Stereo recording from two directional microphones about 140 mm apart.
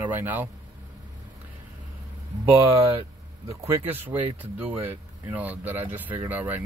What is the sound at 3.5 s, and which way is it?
Speech, 15° right (ahead or behind).